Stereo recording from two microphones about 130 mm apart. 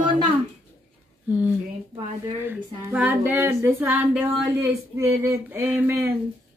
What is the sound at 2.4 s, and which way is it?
Female singing, 10° right (ahead or behind).